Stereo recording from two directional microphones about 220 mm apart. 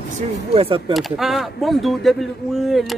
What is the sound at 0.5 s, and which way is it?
Speech, 25° right (ahead or behind).